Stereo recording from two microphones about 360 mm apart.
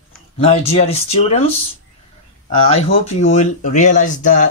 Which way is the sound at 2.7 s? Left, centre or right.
Centre.